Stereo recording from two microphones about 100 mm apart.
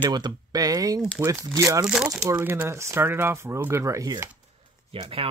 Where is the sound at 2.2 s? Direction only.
25° right (ahead or behind).